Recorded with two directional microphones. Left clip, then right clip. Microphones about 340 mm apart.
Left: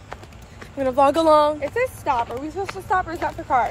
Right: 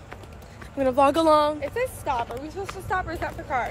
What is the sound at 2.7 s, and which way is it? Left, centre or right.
Speech, centre.